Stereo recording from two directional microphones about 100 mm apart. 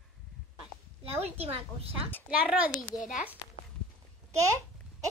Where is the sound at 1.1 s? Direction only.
85° right.